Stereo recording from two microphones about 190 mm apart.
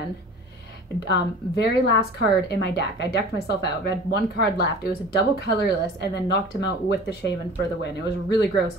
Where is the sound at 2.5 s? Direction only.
60° left (ahead or behind).